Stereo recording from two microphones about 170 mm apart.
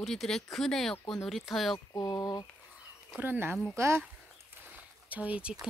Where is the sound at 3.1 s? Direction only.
10° right (ahead or behind).